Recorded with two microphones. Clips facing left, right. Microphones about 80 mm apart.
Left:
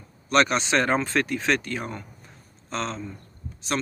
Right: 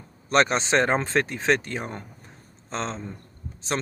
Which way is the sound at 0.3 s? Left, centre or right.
Right.